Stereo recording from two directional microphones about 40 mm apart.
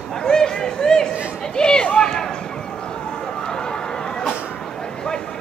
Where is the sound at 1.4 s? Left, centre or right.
Left.